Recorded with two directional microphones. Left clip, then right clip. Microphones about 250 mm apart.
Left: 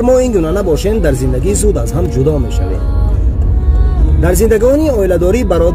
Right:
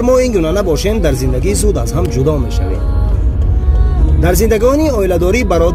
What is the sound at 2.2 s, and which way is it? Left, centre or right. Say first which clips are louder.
Speech: left 2 dB; centre.